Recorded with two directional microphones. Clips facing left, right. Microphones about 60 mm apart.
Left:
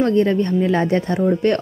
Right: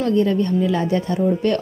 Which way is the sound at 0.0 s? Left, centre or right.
Left.